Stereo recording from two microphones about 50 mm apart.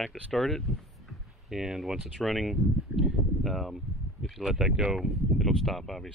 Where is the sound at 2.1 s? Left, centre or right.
Centre.